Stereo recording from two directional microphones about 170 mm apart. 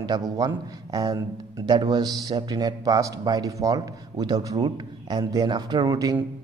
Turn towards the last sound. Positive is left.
turn(degrees=-20)  # may be behind; listen again after turning